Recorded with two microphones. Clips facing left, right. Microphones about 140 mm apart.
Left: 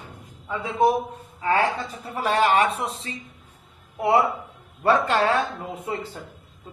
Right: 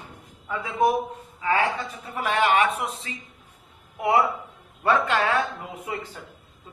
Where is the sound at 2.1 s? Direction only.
35° left (ahead or behind).